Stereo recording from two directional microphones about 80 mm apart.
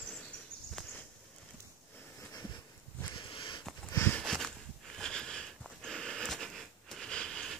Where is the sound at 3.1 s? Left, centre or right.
Left.